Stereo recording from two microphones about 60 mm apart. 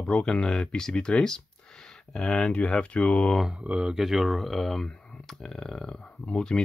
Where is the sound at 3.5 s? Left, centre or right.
Centre.